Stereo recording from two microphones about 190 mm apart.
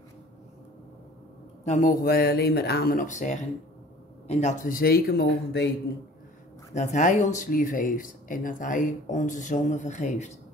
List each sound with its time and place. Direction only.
1.7 s speech: 45° left (ahead or behind); by 5.7 s 60° left (ahead or behind)
6.7 s speech: 35° left (ahead or behind)